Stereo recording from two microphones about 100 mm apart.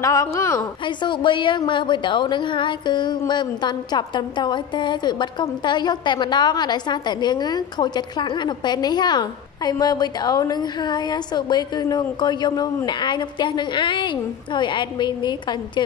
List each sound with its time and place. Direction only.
0.0 s a woman's voice: 35° left (ahead or behind)
0.8 s speech: 50° left (ahead or behind)